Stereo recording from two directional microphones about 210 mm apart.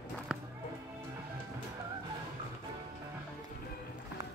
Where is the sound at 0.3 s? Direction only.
Centre (ahead or behind).